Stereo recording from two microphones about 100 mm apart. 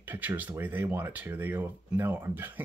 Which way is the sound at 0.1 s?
20° right (ahead or behind).